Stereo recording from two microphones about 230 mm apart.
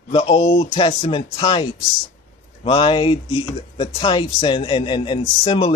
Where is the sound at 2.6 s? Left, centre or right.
Left.